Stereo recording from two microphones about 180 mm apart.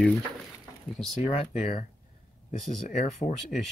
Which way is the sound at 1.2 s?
30° left (ahead or behind).